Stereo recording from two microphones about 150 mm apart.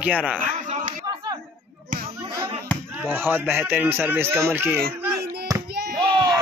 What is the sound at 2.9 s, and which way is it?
A man's voice, 15° right (ahead or behind).